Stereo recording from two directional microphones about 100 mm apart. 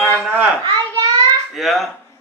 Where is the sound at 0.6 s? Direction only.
50° right (ahead or behind).